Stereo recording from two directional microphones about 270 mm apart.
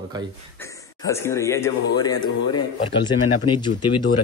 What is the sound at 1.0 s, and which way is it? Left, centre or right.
Speech, centre.